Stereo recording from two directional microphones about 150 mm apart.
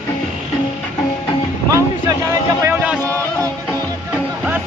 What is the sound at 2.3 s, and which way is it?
Vehicle, 20° right (ahead or behind).